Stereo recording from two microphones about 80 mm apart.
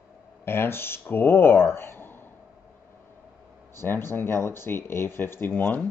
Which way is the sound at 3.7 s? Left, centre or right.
Left.